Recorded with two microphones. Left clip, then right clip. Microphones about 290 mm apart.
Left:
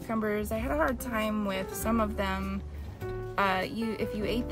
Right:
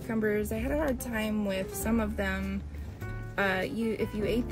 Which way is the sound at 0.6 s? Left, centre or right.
Centre.